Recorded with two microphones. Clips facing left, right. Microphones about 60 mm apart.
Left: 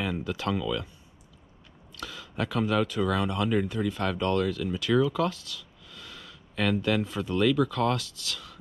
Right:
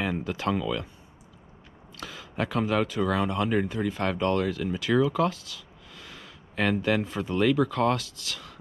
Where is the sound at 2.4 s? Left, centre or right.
Right.